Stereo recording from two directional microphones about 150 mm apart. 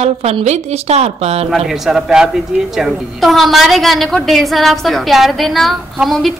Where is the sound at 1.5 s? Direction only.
5° right (ahead or behind).